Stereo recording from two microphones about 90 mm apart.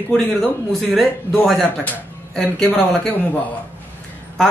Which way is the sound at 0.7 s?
Centre (ahead or behind).